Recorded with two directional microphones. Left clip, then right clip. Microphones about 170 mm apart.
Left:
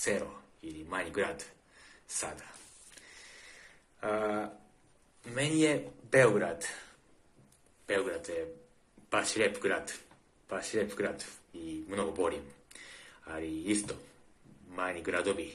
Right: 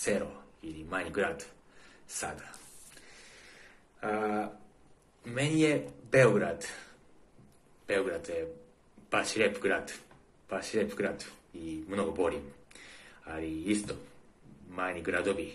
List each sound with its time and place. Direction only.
0.0 s speech: 15° left (ahead or behind)
4.0 s a man's voice: 15° left (ahead or behind)
7.8 s speech: 10° left (ahead or behind)